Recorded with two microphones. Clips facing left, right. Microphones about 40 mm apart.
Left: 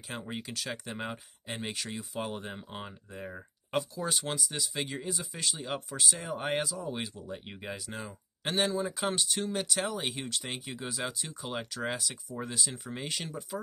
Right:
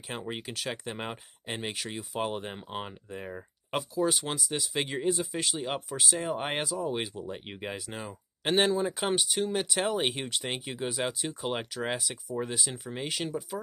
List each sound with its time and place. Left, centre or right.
0.1 s speech: centre
1.6 s speech: centre
2.1 s speech: right
3.3 s speech: centre
4.8 s speech: right
5.9 s speech: centre
6.3 s speech: right
7.2 s speech: right
7.5 s speech: centre
8.5 s speech: right
9.0 s speech: centre
9.8 s speech: right
11.7 s speech: centre